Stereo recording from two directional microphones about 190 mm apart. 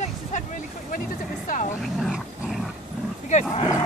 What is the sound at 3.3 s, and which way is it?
Speech, 40° left (ahead or behind).